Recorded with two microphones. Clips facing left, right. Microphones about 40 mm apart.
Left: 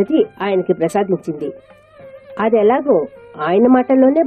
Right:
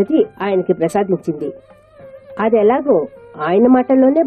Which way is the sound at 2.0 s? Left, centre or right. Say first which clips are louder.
Even; left.